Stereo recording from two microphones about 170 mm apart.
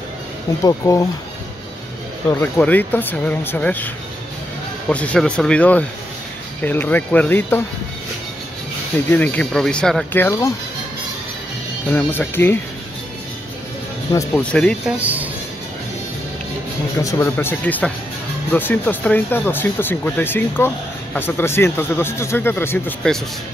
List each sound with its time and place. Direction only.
0.7 s speech: 20° left (ahead or behind)
2.2 s speech: 10° left (ahead or behind)
9.1 s speech: 10° left (ahead or behind)
10.2 s speech: 20° left (ahead or behind)
11.9 s speech: 10° left (ahead or behind)
14.1 s speech: 10° left (ahead or behind)
15.0 s speech: 10° right (ahead or behind)
17.0 s speech: 15° left (ahead or behind)